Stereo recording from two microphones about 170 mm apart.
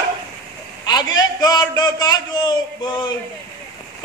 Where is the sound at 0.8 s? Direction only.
25° left (ahead or behind).